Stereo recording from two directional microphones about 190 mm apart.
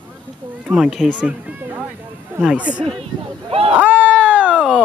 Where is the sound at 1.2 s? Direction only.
10° right (ahead or behind).